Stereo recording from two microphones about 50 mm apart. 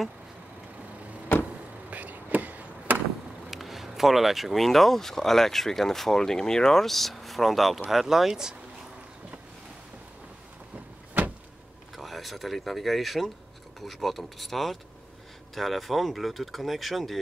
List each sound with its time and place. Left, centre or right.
1.9 s chop: right
3.4 s speech: centre
11.9 s speech: centre